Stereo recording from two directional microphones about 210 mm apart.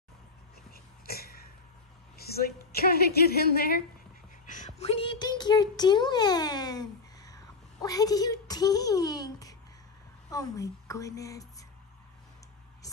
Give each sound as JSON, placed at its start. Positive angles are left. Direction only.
{"t": 0.7, "sound": "throat clearing", "side_deg": 45}
{"t": 2.1, "sound": "a woman's voice", "side_deg": 45}
{"t": 4.5, "sound": "a woman's voice", "side_deg": 35}